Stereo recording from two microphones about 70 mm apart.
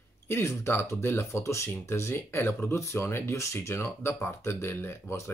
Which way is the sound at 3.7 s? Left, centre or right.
Left.